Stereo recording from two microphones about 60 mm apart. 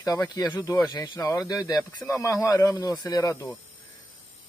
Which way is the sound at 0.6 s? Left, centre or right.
Left.